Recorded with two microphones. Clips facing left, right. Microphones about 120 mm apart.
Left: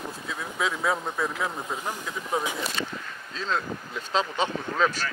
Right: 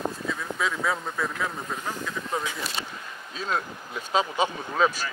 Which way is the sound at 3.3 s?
10° right (ahead or behind).